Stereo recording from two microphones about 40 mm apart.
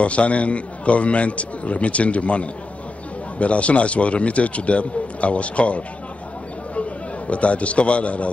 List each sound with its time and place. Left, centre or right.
0.0 s a man's voice: left
7.2 s a man's voice: left